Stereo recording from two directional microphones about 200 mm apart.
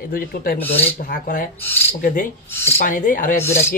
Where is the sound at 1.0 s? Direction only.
45° left (ahead or behind).